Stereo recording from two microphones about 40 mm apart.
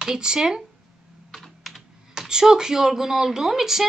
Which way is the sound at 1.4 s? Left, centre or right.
Centre.